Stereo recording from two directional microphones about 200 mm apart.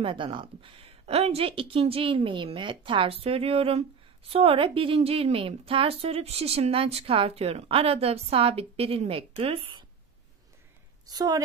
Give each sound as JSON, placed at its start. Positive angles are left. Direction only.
{"t": 0.0, "sound": "a woman's voice", "side_deg": -25}
{"t": 11.1, "sound": "a woman's voice", "side_deg": -20}